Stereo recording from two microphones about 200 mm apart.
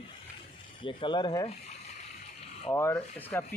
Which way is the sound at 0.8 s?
25° left (ahead or behind).